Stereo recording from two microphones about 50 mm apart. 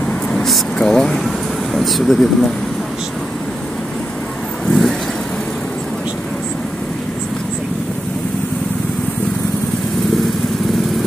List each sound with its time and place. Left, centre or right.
0.3 s air conditioning: centre
4.6 s vehicle: centre